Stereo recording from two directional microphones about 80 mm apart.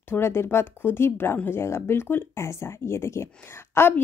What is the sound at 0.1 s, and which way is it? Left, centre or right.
A woman's voice, left.